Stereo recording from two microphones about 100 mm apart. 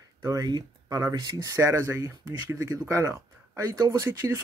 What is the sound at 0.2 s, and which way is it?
Speech, 35° right (ahead or behind).